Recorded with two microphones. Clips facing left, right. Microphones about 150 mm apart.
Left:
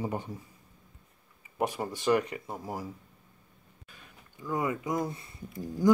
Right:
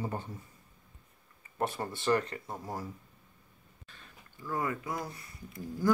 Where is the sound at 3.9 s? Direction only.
10° left (ahead or behind).